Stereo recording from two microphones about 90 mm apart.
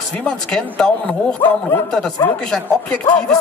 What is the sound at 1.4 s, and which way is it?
Speech, 25° left (ahead or behind).